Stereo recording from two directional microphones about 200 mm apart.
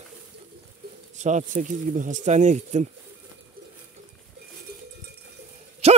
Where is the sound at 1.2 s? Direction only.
35° right (ahead or behind).